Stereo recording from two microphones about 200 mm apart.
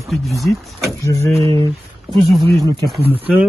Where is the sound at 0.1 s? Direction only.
Centre (ahead or behind).